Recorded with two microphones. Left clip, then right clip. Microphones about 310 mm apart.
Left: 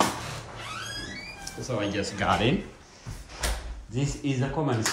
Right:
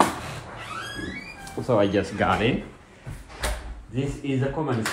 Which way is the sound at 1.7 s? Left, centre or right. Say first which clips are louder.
Right 7 dB; centre.